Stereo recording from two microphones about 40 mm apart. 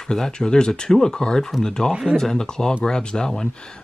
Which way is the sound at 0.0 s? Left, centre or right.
Centre.